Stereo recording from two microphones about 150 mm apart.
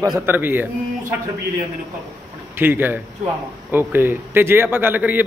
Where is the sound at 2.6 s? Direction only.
15° right (ahead or behind).